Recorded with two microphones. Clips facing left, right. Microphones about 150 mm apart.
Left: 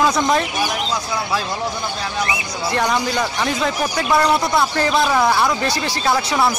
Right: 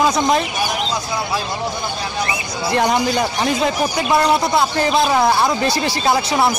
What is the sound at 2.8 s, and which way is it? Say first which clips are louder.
Speech: right 3 dB; 30° right (ahead or behind).